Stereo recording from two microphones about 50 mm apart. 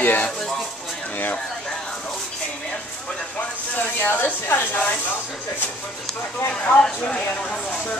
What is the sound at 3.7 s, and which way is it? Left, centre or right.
Speech, left.